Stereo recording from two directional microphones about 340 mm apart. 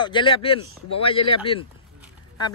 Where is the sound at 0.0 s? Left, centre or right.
Centre.